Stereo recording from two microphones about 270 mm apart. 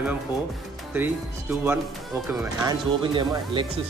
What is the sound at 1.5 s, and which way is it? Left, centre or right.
A man's voice, centre.